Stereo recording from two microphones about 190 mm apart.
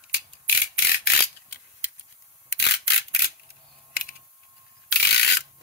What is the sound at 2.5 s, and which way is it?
Mechanisms, 60° left (ahead or behind).